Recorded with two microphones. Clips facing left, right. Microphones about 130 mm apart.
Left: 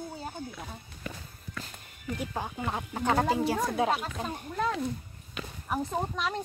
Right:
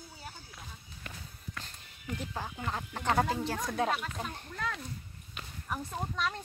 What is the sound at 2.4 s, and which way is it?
Speech, 20° left (ahead or behind).